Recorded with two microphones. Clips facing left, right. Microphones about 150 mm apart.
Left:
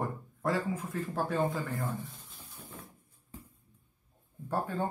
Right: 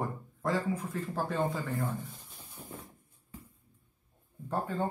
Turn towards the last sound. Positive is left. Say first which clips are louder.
# even
turn(degrees=0)  # may be behind; listen again after turning